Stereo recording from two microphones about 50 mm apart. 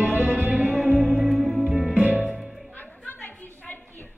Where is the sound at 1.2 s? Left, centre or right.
Centre.